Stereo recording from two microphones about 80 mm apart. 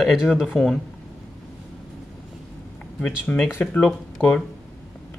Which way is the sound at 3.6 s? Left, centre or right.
Centre.